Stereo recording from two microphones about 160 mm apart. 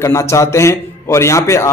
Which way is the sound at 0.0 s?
20° left (ahead or behind).